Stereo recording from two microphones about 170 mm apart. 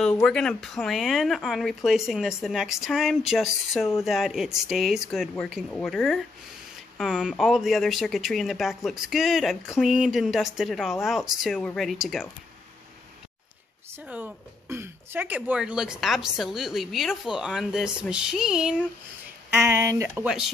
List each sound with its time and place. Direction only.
0.0 s speech: 5° left (ahead or behind)
5.3 s speech: 10° left (ahead or behind)
14.0 s speech: 10° right (ahead or behind)
19.5 s speech: 15° right (ahead or behind)